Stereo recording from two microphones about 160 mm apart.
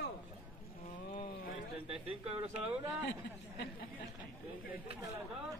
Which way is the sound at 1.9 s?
35° right (ahead or behind).